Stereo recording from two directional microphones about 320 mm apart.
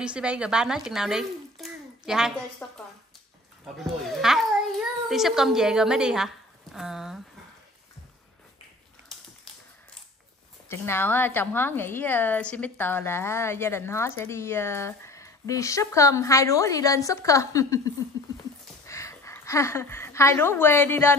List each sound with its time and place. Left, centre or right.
0.0 s a child's voice: centre
10.7 s a woman's voice: centre